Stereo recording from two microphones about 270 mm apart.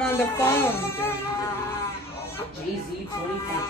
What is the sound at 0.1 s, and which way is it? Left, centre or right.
Speech, centre.